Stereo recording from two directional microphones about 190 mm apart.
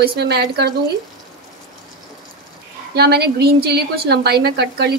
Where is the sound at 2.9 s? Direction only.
55° right (ahead or behind).